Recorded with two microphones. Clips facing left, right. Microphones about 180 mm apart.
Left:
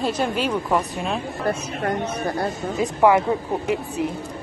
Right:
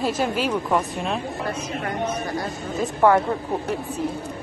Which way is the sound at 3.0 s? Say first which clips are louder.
Left 1 dB; 10° left (ahead or behind).